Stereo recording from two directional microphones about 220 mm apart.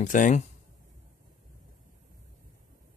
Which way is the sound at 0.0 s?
35° left (ahead or behind).